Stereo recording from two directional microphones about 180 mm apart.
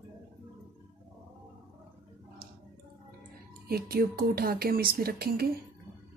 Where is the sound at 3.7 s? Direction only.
55° right (ahead or behind).